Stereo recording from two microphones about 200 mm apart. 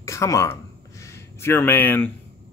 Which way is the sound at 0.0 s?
15° left (ahead or behind).